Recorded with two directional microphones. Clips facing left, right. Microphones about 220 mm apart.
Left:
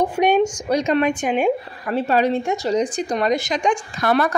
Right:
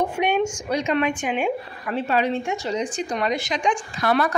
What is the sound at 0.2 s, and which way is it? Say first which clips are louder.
A woman's voice: left 5 dB; 40° left (ahead or behind).